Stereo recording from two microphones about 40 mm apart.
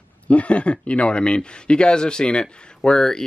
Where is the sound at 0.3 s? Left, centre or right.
Left.